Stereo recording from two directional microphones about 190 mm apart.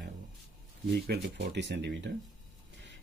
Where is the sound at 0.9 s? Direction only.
55° right (ahead or behind).